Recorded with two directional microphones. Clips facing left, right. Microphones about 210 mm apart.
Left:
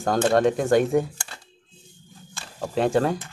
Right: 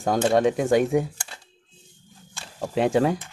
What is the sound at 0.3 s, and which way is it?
Speech, 10° right (ahead or behind).